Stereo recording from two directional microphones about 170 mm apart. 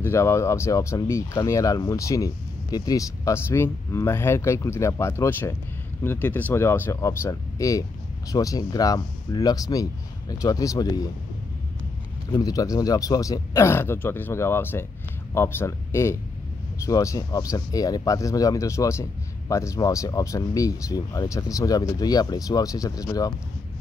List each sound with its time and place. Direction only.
0.0 s speech: 15° left (ahead or behind)
12.3 s speech: 20° left (ahead or behind)